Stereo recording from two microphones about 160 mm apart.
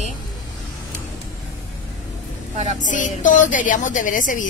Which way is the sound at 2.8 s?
55° left (ahead or behind).